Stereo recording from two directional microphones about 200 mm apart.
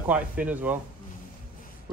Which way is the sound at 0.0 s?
5° right (ahead or behind).